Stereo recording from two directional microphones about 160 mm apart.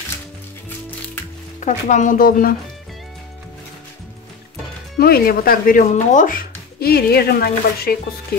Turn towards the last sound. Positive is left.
turn(degrees=70)  # may be behind; listen again after turning